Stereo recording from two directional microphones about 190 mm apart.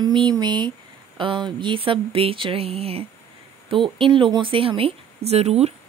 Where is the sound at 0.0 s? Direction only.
25° right (ahead or behind).